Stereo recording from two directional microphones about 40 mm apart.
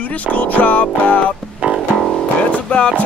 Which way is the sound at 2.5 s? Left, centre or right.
Left.